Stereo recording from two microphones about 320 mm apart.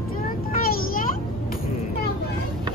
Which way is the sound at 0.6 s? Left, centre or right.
Left.